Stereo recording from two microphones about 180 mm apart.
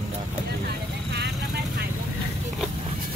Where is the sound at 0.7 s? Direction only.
65° right (ahead or behind).